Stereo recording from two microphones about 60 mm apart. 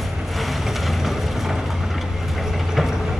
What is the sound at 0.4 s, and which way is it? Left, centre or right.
Boat, centre.